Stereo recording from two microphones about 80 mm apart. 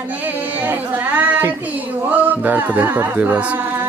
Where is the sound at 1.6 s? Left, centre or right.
Centre.